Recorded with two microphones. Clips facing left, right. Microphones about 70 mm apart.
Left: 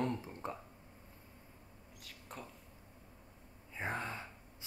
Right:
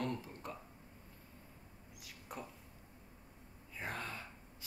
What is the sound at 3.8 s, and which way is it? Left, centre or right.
Speech, left.